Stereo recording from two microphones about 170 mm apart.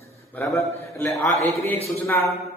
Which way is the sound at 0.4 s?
15° left (ahead or behind).